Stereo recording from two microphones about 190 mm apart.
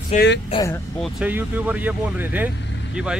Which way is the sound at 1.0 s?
10° right (ahead or behind).